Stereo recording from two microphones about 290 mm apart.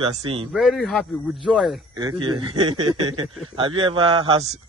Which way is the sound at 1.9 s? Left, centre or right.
Centre.